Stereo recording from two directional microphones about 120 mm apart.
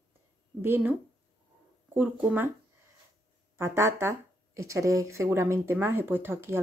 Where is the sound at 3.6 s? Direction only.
20° right (ahead or behind).